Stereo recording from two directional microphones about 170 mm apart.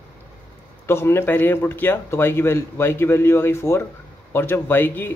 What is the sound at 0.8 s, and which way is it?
A man's voice, 15° left (ahead or behind).